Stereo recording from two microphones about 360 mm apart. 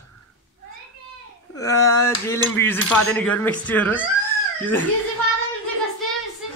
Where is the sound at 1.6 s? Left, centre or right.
Centre.